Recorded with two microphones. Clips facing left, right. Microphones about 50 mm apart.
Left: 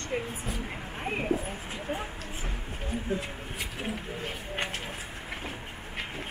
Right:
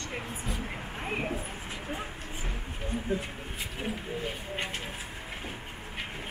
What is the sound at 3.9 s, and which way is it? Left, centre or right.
Speech, left.